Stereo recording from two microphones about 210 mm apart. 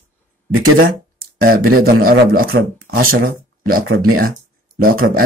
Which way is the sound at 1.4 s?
45° right (ahead or behind).